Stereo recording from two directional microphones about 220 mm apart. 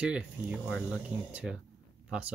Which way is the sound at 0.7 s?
10° left (ahead or behind).